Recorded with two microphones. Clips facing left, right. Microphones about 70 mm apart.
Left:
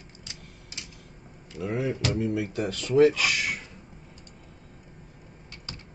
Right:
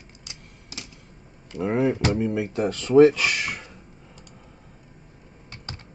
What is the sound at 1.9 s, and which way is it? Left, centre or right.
Speech, right.